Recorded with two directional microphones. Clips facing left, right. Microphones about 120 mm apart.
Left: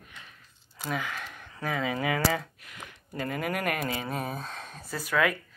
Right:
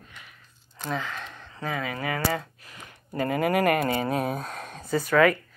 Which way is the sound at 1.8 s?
10° left (ahead or behind).